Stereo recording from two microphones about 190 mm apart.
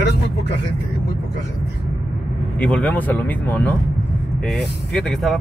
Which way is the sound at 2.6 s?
5° left (ahead or behind).